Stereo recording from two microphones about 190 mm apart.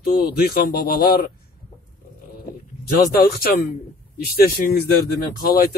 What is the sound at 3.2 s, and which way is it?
A man's voice, 50° left (ahead or behind).